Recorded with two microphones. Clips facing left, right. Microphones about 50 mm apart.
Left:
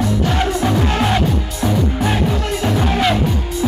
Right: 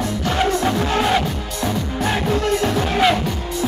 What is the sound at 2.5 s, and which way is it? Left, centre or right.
Music, centre.